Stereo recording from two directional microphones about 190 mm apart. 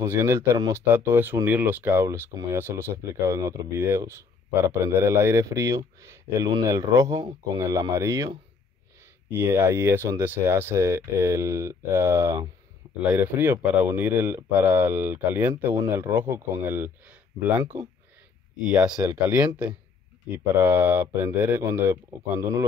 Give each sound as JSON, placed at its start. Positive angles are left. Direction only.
{"t": 0.0, "sound": "speech", "side_deg": -15}
{"t": 9.4, "sound": "speech", "side_deg": -15}
{"t": 18.7, "sound": "speech", "side_deg": -5}